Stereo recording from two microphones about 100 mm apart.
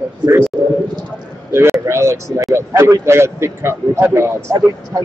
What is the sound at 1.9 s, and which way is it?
A man's voice, 30° right (ahead or behind).